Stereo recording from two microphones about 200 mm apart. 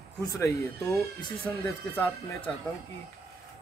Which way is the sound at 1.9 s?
10° left (ahead or behind).